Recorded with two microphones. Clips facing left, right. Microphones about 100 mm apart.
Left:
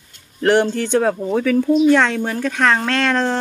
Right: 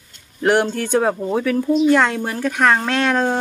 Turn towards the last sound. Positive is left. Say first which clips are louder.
# even
turn(degrees=-10)  # may be behind; listen again after turning